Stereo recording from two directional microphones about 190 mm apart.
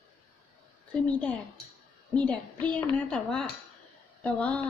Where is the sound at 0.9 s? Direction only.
5° left (ahead or behind).